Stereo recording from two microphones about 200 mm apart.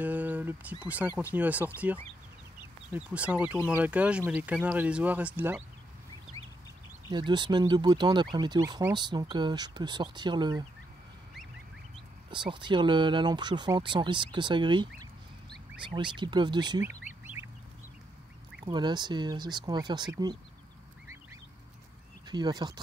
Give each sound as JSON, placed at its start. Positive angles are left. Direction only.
{"t": 0.0, "sound": "speech", "side_deg": -10}
{"t": 7.1, "sound": "speech", "side_deg": -20}
{"t": 12.3, "sound": "speech", "side_deg": -25}
{"t": 15.9, "sound": "speech", "side_deg": -25}
{"t": 16.8, "sound": "duck", "side_deg": -10}
{"t": 18.7, "sound": "speech", "side_deg": -20}
{"t": 22.3, "sound": "speech", "side_deg": -20}